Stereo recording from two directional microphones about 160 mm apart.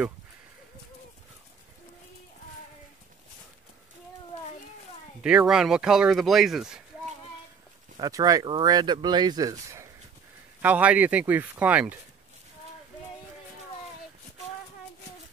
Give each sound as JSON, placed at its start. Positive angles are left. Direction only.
{"t": 5.2, "sound": "speech", "side_deg": -5}
{"t": 8.0, "sound": "speech", "side_deg": -25}
{"t": 10.6, "sound": "speech", "side_deg": -10}